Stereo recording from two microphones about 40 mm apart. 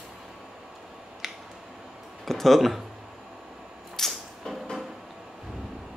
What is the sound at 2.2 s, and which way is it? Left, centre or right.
Speech, centre.